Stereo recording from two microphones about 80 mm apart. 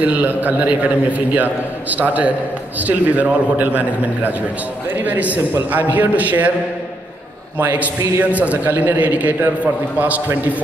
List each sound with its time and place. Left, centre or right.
0.0 s a man's voice: centre
7.5 s a man's voice: right